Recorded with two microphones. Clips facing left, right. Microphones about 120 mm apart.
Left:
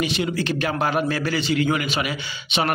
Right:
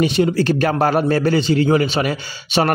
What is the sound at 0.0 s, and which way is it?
A man's voice, 40° right (ahead or behind).